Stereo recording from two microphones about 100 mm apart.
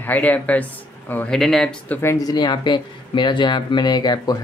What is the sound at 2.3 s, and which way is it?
Speech, 45° left (ahead or behind).